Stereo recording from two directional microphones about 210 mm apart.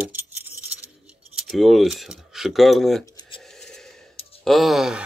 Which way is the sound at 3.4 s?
Centre (ahead or behind).